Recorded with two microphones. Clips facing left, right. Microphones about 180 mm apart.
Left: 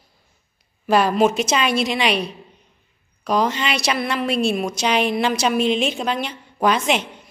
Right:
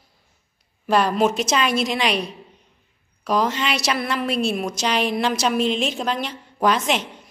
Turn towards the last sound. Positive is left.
turn(degrees=0)  # may be behind; listen again after turning